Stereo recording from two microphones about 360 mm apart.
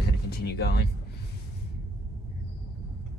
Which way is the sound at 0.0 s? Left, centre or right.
Left.